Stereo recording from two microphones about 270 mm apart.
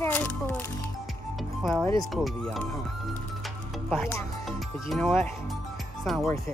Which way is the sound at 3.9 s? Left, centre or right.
Centre.